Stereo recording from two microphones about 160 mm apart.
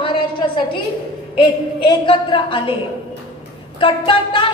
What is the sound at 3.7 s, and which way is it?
Speech, 30° left (ahead or behind).